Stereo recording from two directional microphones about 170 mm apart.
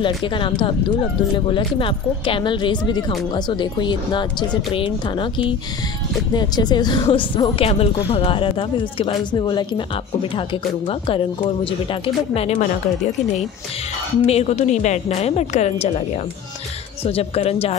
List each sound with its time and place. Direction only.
0.0 s speech: 30° left (ahead or behind)
14.2 s speech: 40° left (ahead or behind)
17.0 s speech: 35° left (ahead or behind)